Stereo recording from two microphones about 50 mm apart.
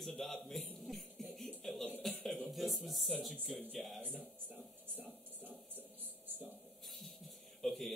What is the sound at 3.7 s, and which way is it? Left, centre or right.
Speech, centre.